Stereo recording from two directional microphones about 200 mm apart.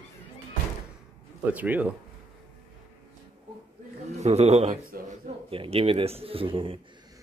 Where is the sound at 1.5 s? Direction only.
10° right (ahead or behind).